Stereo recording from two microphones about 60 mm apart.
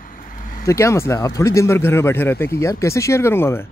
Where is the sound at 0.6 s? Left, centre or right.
Left.